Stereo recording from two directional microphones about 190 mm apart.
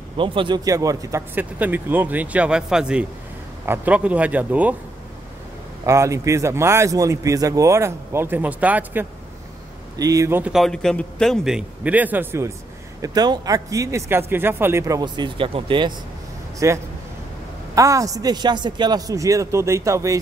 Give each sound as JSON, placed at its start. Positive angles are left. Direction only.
{"t": 0.2, "sound": "speech", "side_deg": -25}
{"t": 5.9, "sound": "speech", "side_deg": -15}
{"t": 16.5, "sound": "speech", "side_deg": -15}